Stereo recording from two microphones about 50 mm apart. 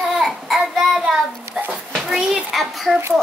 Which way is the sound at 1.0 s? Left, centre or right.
Centre.